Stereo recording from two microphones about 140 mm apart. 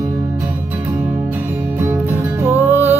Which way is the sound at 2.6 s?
20° left (ahead or behind).